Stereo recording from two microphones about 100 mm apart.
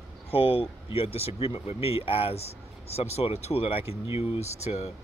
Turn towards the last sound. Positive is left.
turn(degrees=90)